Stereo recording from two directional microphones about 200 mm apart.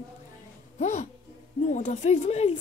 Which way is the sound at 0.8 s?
35° left (ahead or behind).